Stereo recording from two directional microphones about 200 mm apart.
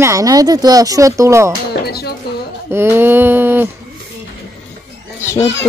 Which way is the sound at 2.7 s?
10° right (ahead or behind).